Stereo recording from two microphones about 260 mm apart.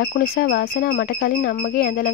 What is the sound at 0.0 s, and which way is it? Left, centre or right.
Speech, left.